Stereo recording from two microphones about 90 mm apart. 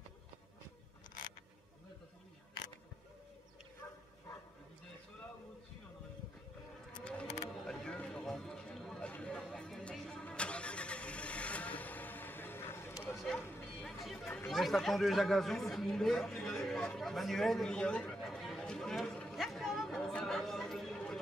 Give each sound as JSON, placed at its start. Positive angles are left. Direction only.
{"t": 6.9, "sound": "a sound", "side_deg": 10}
{"t": 9.1, "sound": "chatter", "side_deg": 10}
{"t": 10.2, "sound": "vehicle", "side_deg": 10}
{"t": 13.8, "sound": "a sound", "side_deg": 5}
{"t": 14.5, "sound": "speech", "side_deg": 0}
{"t": 18.6, "sound": "chatter", "side_deg": 10}